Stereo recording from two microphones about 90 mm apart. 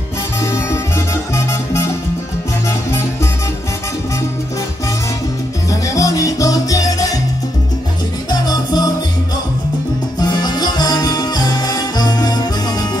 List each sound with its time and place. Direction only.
0.4 s music: 30° left (ahead or behind)
5.7 s music: 40° left (ahead or behind)
8.3 s salsa music: 50° left (ahead or behind)
10.1 s music: 50° left (ahead or behind)